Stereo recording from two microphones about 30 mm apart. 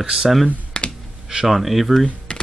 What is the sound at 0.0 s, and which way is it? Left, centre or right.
Speech, right.